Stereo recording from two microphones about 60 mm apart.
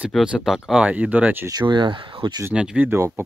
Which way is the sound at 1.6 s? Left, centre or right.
Right.